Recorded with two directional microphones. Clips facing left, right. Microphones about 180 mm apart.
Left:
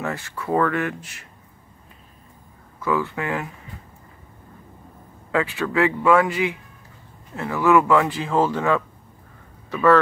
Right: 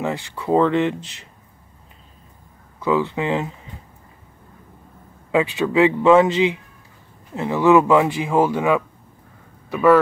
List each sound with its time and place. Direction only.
0.0 s a man's voice: 20° right (ahead or behind)
2.8 s a man's voice: 20° right (ahead or behind)
5.3 s a man's voice: 20° right (ahead or behind)